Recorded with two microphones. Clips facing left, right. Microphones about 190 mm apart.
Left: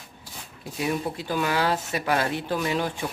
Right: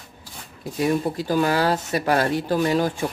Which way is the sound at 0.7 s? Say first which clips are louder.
Right 6 dB; 40° right (ahead or behind).